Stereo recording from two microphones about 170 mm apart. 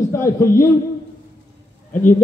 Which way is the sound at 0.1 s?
15° left (ahead or behind).